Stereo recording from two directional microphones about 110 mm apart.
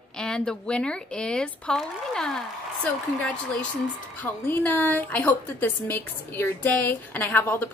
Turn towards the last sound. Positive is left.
turn(degrees=20)  # may be behind; listen again after turning